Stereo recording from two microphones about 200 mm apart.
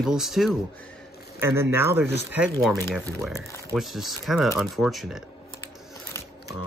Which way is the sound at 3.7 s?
Centre (ahead or behind).